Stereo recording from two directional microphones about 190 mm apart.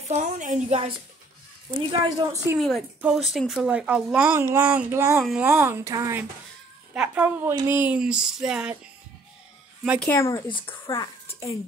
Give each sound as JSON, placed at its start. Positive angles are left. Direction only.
{"t": 0.1, "sound": "a woman's voice", "side_deg": -40}
{"t": 1.9, "sound": "speech", "side_deg": -15}
{"t": 2.6, "sound": "speech", "side_deg": 0}
{"t": 5.2, "sound": "speech", "side_deg": -5}
{"t": 9.9, "sound": "speech", "side_deg": 10}